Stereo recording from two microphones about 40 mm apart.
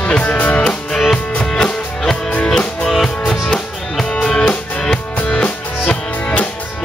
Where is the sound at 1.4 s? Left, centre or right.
Centre.